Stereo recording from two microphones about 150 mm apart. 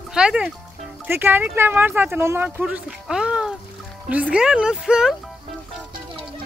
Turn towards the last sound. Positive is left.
turn(degrees=-5)  # may be behind; listen again after turning